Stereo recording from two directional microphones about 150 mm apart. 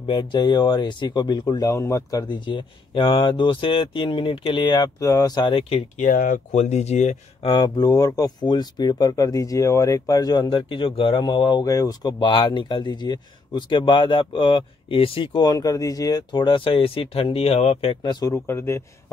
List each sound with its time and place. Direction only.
0.0 s speech: 30° left (ahead or behind)
5.9 s speech: 65° left (ahead or behind)
6.5 s speech: 50° left (ahead or behind)
7.4 s speech: 30° left (ahead or behind)
18.0 s speech: 20° left (ahead or behind)